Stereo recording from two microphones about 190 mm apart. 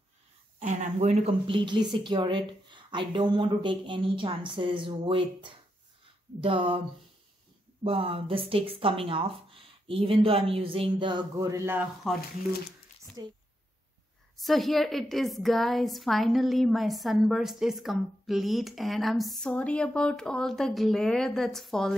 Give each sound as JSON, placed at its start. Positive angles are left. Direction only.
{"t": 0.6, "sound": "speech", "side_deg": -40}
{"t": 7.8, "sound": "speech", "side_deg": -30}
{"t": 12.1, "sound": "a woman's voice", "side_deg": 0}
{"t": 13.2, "sound": "speech", "side_deg": -20}
{"t": 14.3, "sound": "a woman's voice", "side_deg": 0}